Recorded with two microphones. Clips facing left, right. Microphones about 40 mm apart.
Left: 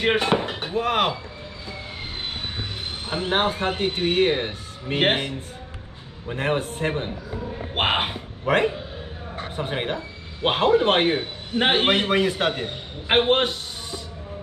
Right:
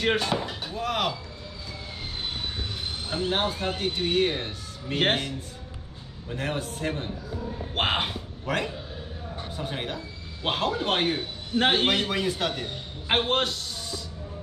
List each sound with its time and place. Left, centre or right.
0.0 s speech: left
3.1 s speech: left